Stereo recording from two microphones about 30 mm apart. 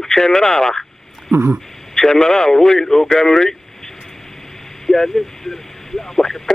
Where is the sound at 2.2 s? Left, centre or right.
Centre.